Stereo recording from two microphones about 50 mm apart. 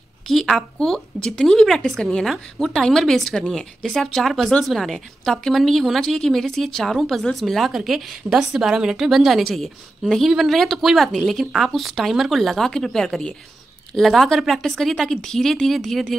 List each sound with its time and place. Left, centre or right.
0.3 s a woman's voice: centre
2.6 s a woman's voice: centre
9.4 s speech: centre
10.2 s speech: centre